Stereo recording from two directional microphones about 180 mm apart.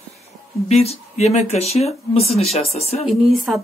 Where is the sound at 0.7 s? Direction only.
35° left (ahead or behind).